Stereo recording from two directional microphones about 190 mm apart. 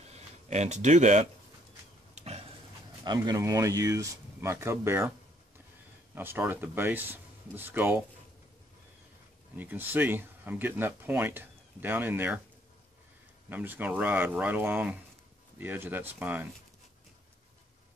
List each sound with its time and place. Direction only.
0.1 s a sound: 35° right (ahead or behind)
3.0 s speech: 20° right (ahead or behind)
6.1 s speech: 10° right (ahead or behind)
9.6 s speech: 10° right (ahead or behind)
13.5 s speech: 10° right (ahead or behind)